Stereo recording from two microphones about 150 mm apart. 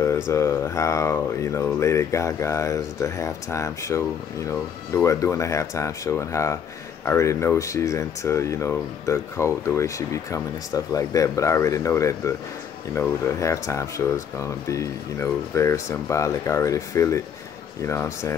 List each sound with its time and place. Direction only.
0.0 s speech: 20° left (ahead or behind)